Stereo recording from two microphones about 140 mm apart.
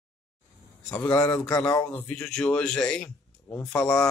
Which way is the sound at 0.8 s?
25° left (ahead or behind).